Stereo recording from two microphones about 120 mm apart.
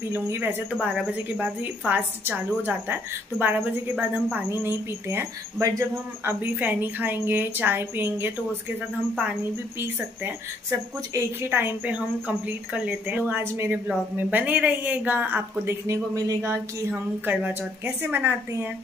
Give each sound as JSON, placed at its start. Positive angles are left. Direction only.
{"t": 0.1, "sound": "a woman's voice", "side_deg": -15}
{"t": 6.4, "sound": "a woman's voice", "side_deg": -15}
{"t": 9.8, "sound": "a woman's voice", "side_deg": -20}
{"t": 17.3, "sound": "a woman's voice", "side_deg": -15}